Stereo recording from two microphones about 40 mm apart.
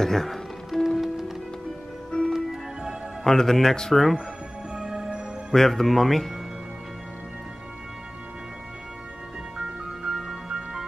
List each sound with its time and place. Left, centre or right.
0.0 s speech: centre
0.8 s music: centre
2.0 s music: centre
3.3 s speech: centre
3.9 s speech: centre
4.7 s music: centre
5.5 s speech: centre
9.6 s music: centre